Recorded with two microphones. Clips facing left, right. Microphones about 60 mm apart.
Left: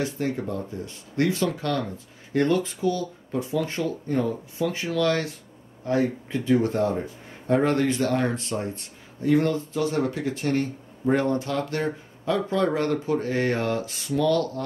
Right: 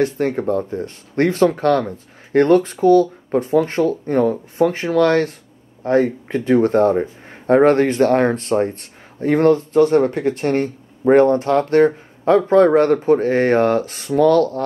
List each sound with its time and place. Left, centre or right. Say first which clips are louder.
0.0 s speech: right 9 dB; right